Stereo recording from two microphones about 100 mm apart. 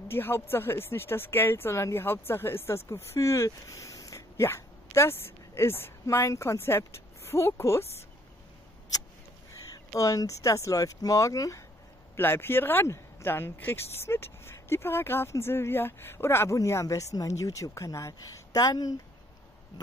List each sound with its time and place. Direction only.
0.1 s speech: 25° left (ahead or behind)
9.5 s speech: 35° left (ahead or behind)
12.2 s speech: 20° left (ahead or behind); by 18.9 s 40° left (ahead or behind)